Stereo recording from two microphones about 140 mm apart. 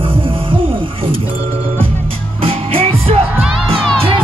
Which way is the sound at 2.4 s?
45° right (ahead or behind).